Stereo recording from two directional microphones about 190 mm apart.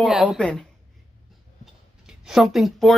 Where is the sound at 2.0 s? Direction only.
Centre (ahead or behind).